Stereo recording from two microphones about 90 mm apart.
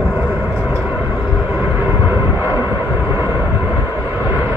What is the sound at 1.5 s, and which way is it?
Vehicle, 20° right (ahead or behind).